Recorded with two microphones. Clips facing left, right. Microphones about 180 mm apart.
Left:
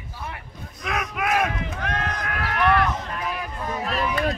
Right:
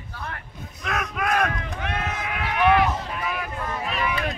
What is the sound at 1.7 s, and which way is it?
Run, 5° right (ahead or behind).